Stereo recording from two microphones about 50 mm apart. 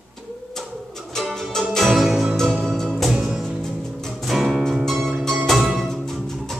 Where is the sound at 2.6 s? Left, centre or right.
Centre.